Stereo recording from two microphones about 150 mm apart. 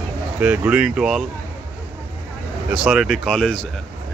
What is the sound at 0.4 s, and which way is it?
Speech, 10° right (ahead or behind).